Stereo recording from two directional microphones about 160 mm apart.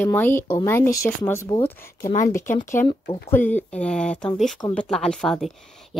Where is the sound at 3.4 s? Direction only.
50° left (ahead or behind).